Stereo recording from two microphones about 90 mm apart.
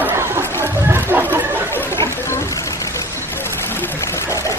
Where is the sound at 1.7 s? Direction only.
25° left (ahead or behind).